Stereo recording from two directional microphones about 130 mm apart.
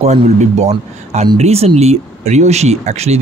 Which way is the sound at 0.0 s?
60° right (ahead or behind).